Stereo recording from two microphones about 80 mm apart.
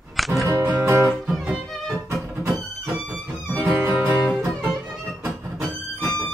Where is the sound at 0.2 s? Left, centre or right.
Centre.